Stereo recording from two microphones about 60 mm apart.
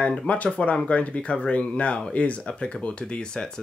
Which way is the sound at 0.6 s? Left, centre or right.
Left.